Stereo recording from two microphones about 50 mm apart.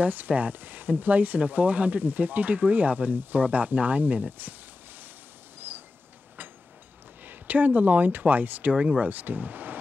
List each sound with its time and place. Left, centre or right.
0.0 s speech: right
7.2 s speech: right
8.7 s speech: right
9.1 s speech: right